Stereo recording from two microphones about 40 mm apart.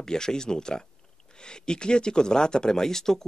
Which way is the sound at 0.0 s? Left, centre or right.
Centre.